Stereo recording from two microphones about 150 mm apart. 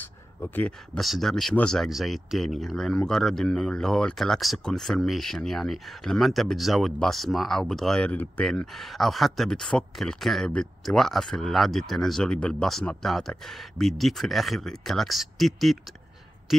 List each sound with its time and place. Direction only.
0.4 s speech: 10° left (ahead or behind)